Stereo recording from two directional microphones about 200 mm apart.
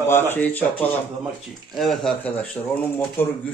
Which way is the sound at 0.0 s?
10° left (ahead or behind).